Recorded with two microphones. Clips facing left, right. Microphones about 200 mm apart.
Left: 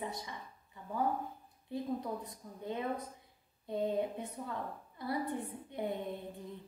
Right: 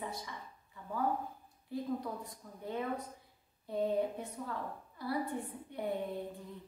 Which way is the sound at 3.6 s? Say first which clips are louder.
Right 1 dB; 20° left (ahead or behind).